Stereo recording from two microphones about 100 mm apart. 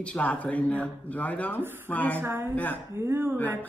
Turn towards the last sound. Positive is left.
turn(degrees=-25)  # may be behind; listen again after turning